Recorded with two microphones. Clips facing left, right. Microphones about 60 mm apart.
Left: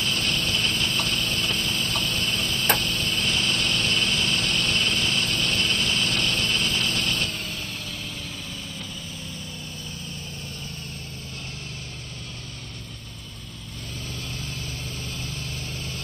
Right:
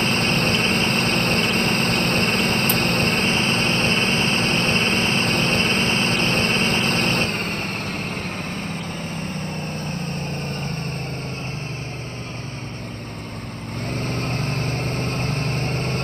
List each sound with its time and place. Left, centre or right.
0.0 s vehicle: right
9.8 s vehicle: right
13.9 s vehicle: right